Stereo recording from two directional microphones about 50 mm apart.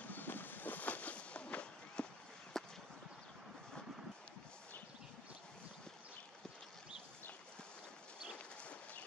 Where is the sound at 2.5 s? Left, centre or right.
Centre.